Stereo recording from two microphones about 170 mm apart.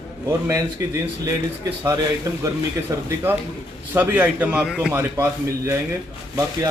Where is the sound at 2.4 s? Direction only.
20° right (ahead or behind).